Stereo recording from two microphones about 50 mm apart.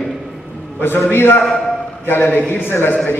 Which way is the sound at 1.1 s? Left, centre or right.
Left.